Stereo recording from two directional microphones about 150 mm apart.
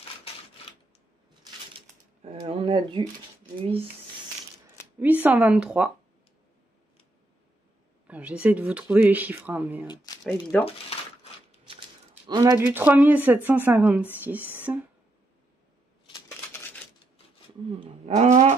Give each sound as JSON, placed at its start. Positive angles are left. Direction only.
{"t": 2.3, "sound": "speech", "side_deg": -40}
{"t": 4.9, "sound": "speech", "side_deg": -10}
{"t": 8.1, "sound": "speech", "side_deg": -10}
{"t": 10.1, "sound": "a sound", "side_deg": 25}
{"t": 10.5, "sound": "speech", "side_deg": 10}
{"t": 12.3, "sound": "speech", "side_deg": -25}
{"t": 12.5, "sound": "speech", "side_deg": -10}
{"t": 18.0, "sound": "wild animals", "side_deg": -50}